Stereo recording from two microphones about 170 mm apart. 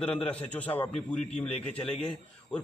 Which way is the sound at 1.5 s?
35° left (ahead or behind).